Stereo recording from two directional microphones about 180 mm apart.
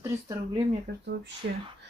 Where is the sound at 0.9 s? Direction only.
60° right (ahead or behind).